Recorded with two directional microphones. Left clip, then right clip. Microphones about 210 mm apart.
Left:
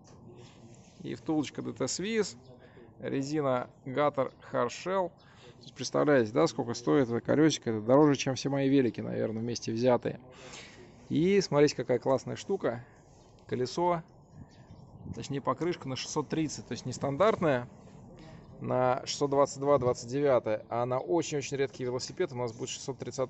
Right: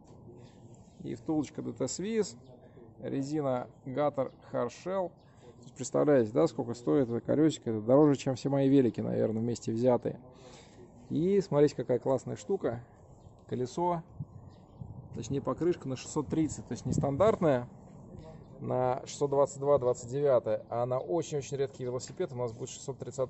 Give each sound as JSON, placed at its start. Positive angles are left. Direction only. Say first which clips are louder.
{"t": 1.0, "sound": "speech", "louder": "left 1 dB", "side_deg": -10}
{"t": 5.9, "sound": "speech", "louder": "even", "side_deg": -15}
{"t": 15.1, "sound": "speech", "louder": "left 2 dB", "side_deg": -5}
{"t": 18.6, "sound": "speech", "louder": "left 2 dB", "side_deg": 0}